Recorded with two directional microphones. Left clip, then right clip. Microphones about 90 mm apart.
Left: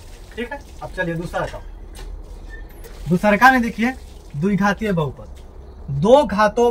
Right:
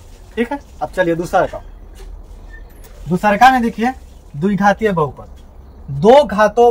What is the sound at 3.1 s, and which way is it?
Speech, 45° right (ahead or behind).